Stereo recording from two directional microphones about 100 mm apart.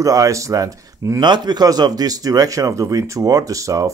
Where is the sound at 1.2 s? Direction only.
45° right (ahead or behind).